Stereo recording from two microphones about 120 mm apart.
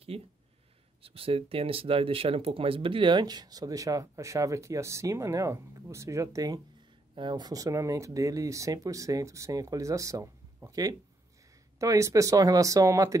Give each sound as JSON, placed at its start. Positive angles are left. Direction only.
{"t": 0.1, "sound": "speech", "side_deg": -55}